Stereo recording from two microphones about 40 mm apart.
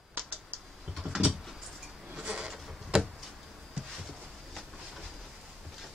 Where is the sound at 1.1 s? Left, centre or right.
Centre.